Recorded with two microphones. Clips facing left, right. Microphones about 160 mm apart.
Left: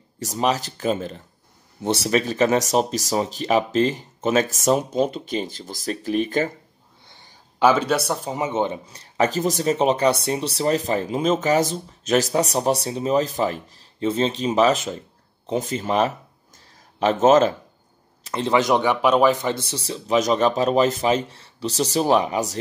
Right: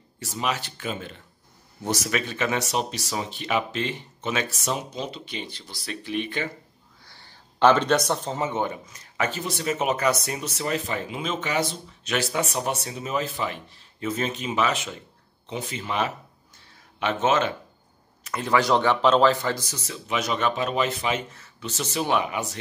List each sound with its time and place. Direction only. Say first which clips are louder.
0.2 s speech: left 6 dB; 40° left (ahead or behind)
7.5 s speech: left 1 dB; 10° left (ahead or behind)
8.8 s speech: left 7 dB; 35° left (ahead or behind)
18.2 s speech: left 3 dB; 25° left (ahead or behind)